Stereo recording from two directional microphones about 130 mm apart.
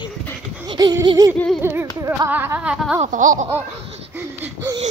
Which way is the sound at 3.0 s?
85° right.